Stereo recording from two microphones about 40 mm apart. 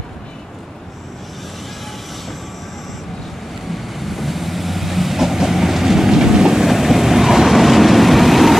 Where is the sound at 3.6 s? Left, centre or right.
Centre.